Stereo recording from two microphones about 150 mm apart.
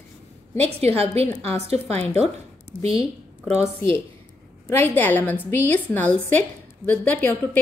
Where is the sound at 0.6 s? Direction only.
45° right (ahead or behind).